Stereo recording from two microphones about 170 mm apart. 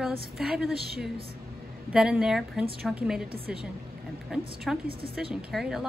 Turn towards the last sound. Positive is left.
turn(degrees=0)  # may be behind; listen again after turning